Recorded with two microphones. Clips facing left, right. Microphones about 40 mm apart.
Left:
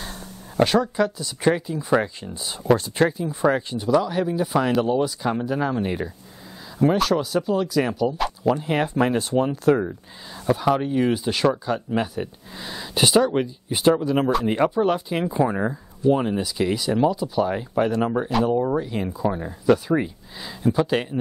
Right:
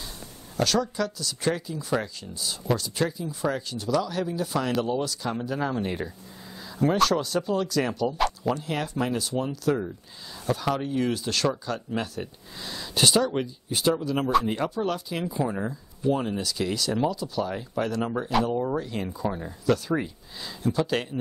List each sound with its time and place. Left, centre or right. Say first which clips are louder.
0.6 s speech: left 6 dB; left; by 8.5 s centre
8.5 s speech: left 7 dB; left
10.4 s speech: left 6 dB; centre; by 15.8 s left
16.1 s speech: left 5 dB; centre